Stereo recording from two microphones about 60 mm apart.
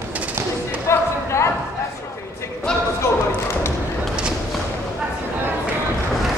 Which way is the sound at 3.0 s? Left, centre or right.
Left.